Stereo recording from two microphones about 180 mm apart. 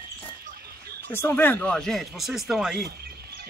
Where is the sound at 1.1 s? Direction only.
10° left (ahead or behind).